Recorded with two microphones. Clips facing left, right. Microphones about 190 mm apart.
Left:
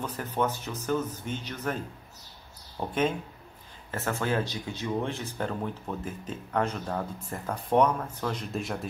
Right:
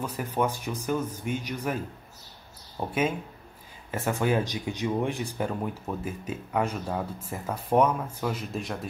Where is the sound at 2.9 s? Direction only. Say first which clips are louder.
Even; 10° right (ahead or behind).